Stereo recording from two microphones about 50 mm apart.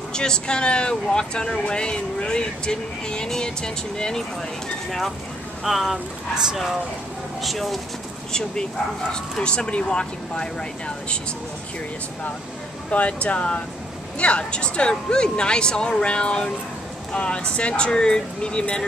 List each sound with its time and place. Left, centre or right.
0.1 s speech: centre
5.6 s speech: centre
8.3 s speech: centre
12.9 s speech: left